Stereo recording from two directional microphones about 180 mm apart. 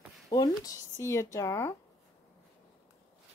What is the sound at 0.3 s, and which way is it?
Speech, 20° left (ahead or behind).